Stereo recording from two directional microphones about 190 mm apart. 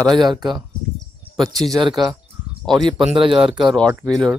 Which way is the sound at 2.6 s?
Centre (ahead or behind).